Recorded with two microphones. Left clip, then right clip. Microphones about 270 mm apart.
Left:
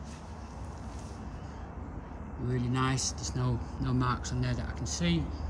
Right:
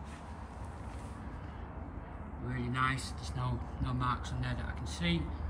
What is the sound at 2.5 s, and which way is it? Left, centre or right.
Speech, centre.